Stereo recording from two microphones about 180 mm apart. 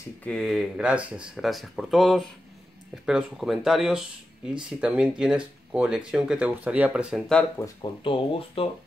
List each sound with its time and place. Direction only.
0.2 s speech: 5° left (ahead or behind)
7.5 s speech: 20° left (ahead or behind)